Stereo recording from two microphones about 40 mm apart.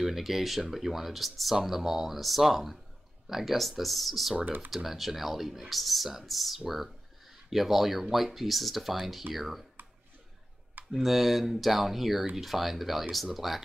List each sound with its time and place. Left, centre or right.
0.0 s speech: centre
10.9 s speech: centre